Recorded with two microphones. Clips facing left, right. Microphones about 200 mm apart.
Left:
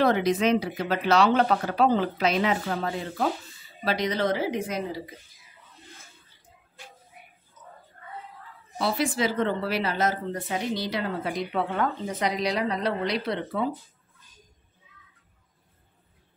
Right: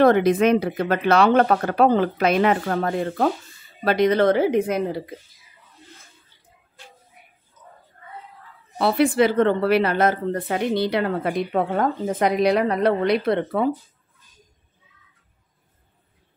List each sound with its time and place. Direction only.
0.0 s speech: 55° right (ahead or behind)
8.7 s speech: 60° right (ahead or behind)